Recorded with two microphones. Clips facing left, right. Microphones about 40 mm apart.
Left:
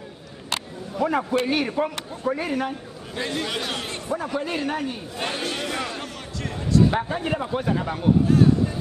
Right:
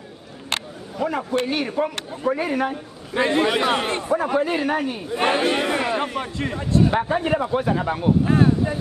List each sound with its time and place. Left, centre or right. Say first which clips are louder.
1.0 s a man's voice: left 1 dB; centre
3.2 s a man's voice: right 9 dB; right
4.4 s a man's voice: right 5 dB; centre
5.2 s a man's voice: right 8 dB; right
6.9 s a man's voice: right 4 dB; centre
8.3 s vehicle: even; right